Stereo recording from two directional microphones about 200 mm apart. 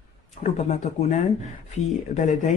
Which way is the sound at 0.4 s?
35° left (ahead or behind).